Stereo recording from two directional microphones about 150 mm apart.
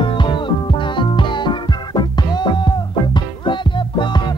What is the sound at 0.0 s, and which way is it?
Music, 30° left (ahead or behind).